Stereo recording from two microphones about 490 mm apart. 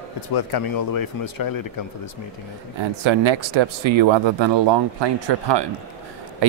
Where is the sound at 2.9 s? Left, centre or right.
Right.